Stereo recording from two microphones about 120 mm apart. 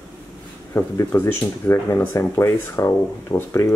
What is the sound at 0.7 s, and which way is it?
Speech, 20° left (ahead or behind).